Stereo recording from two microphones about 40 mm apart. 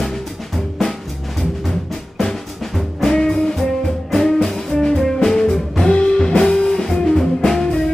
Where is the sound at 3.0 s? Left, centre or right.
Centre.